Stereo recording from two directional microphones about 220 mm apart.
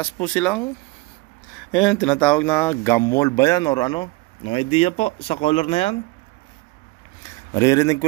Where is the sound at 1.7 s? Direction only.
5° left (ahead or behind); by 5.9 s 25° left (ahead or behind).